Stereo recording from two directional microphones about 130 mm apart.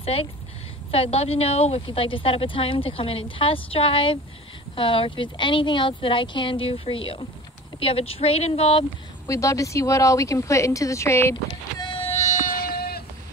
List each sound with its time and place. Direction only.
0.0 s a woman's voice: 45° left (ahead or behind)
9.3 s speech: 25° left (ahead or behind)
11.8 s vehicle: 40° left (ahead or behind)
12.1 s a sound: 60° left (ahead or behind)